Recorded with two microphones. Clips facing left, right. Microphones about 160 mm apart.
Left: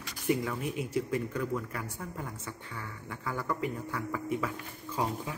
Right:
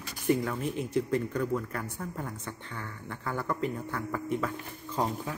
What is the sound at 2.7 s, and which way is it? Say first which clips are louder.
A man's voice: right 2 dB; 10° left (ahead or behind).